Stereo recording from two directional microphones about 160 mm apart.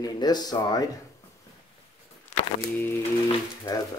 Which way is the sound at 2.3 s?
45° left (ahead or behind).